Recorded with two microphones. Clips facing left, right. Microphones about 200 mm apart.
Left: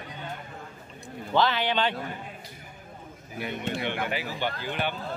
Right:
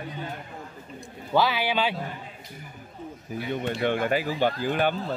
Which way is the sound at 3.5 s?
50° right (ahead or behind).